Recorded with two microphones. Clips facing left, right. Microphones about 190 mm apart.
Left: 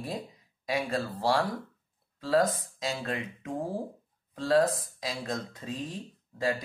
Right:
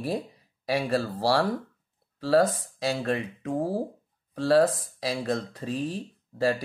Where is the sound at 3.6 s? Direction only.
35° right (ahead or behind).